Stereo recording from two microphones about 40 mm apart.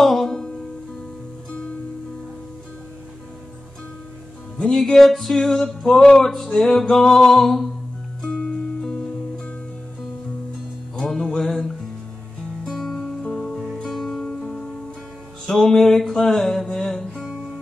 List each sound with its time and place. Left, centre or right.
0.0 s music: centre
0.3 s music: centre
4.6 s a sound: centre
8.2 s music: left
11.0 s music: centre
14.2 s music: centre